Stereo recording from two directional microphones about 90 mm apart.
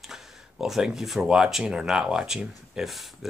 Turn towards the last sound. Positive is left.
turn(degrees=0)  # may be behind; listen again after turning